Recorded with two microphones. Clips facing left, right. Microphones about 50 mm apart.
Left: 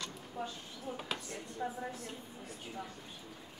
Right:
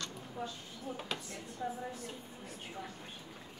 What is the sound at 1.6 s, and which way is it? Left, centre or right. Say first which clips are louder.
Speech: even; centre.